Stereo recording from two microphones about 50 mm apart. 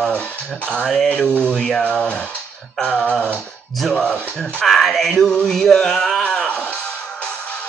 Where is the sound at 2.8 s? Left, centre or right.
Centre.